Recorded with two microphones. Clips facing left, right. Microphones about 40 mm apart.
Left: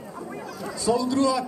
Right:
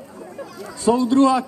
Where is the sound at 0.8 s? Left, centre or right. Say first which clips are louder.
Right 6 dB; right.